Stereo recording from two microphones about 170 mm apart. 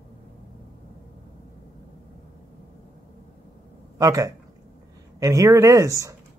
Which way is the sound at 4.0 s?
20° right (ahead or behind).